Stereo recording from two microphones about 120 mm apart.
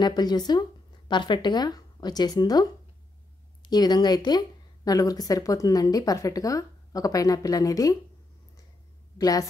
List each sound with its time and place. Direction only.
0.0 s speech: 35° left (ahead or behind)
9.2 s a woman's voice: 30° left (ahead or behind)